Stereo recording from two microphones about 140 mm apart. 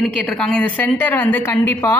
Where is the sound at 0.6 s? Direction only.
10° left (ahead or behind).